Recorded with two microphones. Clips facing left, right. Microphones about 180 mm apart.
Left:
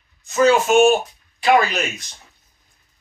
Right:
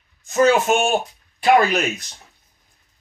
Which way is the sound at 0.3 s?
50° right (ahead or behind).